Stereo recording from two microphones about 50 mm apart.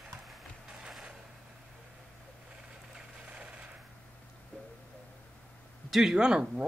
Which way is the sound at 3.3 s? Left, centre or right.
Right.